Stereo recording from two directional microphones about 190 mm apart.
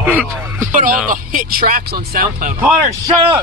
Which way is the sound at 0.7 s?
45° right (ahead or behind).